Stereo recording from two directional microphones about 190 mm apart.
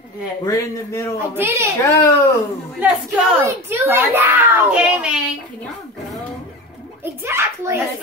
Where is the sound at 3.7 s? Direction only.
10° right (ahead or behind).